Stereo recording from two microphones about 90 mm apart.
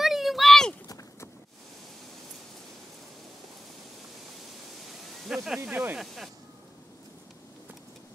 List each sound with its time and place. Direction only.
0.0 s a sound: centre (ahead or behind)
5.2 s speech: 5° right (ahead or behind)
5.7 s speech: 15° right (ahead or behind)
5.9 s speech: centre (ahead or behind)